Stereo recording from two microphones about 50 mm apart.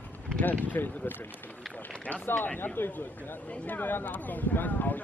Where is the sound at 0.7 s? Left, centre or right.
Left.